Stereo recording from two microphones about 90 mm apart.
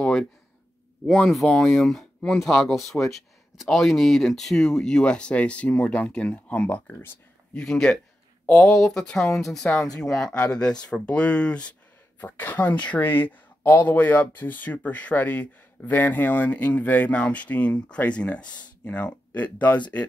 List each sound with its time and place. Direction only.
0.0 s a sound: 5° left (ahead or behind)
1.1 s speech: 5° left (ahead or behind)
7.5 s speech: 5° left (ahead or behind)